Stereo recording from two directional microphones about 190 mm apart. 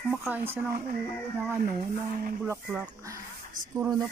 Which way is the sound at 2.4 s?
10° right (ahead or behind).